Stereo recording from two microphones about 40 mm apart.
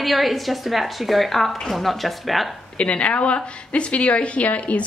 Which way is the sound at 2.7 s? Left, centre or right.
Left.